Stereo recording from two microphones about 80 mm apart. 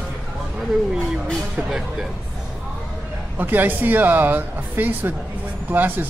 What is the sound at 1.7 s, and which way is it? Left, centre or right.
Speech, centre.